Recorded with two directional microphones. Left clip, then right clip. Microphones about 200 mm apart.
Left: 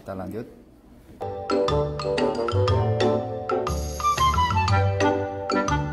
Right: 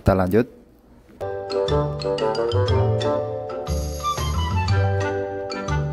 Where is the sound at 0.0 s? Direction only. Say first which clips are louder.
Right 15 dB; 45° right (ahead or behind).